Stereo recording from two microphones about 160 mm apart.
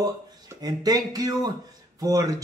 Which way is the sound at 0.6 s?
25° right (ahead or behind).